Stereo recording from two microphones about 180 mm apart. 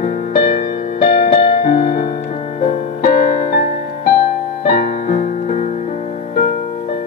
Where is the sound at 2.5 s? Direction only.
40° left (ahead or behind).